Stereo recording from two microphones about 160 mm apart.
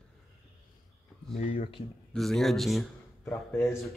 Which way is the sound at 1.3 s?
40° left (ahead or behind).